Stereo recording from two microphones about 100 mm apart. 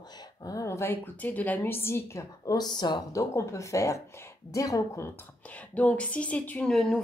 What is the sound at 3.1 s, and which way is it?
Speech, 30° left (ahead or behind).